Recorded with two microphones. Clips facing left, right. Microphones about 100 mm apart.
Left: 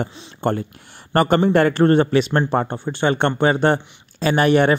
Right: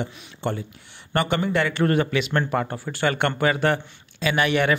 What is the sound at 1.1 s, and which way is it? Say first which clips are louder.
Speech: left 7 dB; 40° left (ahead or behind).